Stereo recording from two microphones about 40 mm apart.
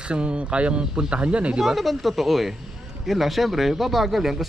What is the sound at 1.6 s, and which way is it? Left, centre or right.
Speech, centre.